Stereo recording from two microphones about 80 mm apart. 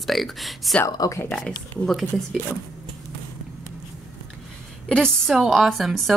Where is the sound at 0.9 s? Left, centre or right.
Left.